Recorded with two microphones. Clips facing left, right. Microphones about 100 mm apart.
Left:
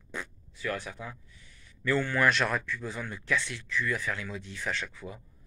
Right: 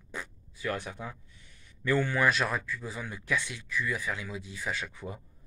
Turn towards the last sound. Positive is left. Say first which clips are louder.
# right 2 dB
turn(degrees=-25)  # may be behind; listen again after turning